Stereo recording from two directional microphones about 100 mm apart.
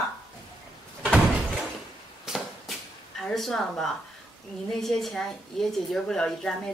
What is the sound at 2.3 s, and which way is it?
Chop, 5° right (ahead or behind).